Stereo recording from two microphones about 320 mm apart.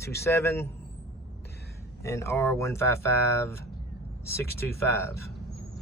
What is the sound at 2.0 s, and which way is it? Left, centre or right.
Speech, centre.